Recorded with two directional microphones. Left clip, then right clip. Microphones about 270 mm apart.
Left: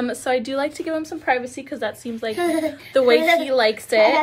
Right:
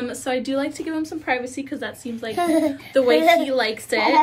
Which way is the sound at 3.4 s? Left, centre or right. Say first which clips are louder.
Left 3 dB; centre.